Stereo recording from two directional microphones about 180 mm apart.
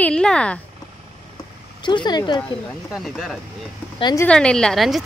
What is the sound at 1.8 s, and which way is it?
Speech, 25° left (ahead or behind).